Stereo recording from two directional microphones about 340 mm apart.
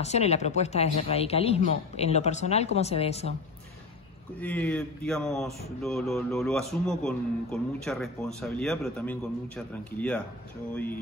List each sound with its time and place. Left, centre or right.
0.0 s speech: centre
4.4 s speech: centre